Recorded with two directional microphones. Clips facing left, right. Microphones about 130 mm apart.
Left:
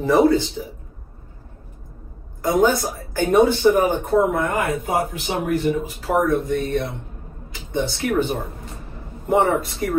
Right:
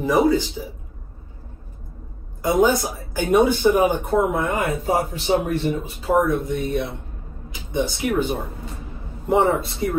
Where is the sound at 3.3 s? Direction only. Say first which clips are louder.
Left 1 dB; 15° right (ahead or behind).